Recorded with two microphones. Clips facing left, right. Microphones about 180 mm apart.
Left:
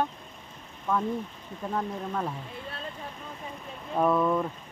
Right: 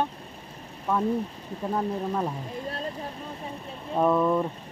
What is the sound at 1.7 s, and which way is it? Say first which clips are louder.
Speech: right 4 dB; 15° right (ahead or behind).